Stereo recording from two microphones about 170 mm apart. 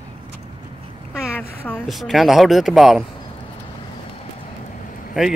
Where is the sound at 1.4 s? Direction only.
5° left (ahead or behind).